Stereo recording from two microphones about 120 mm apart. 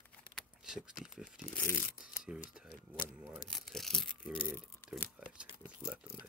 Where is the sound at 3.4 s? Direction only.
5° left (ahead or behind).